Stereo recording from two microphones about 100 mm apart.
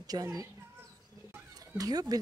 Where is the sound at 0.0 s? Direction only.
40° right (ahead or behind).